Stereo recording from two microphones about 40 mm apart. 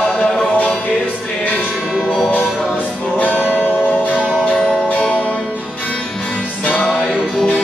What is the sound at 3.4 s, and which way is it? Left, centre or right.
Music, left.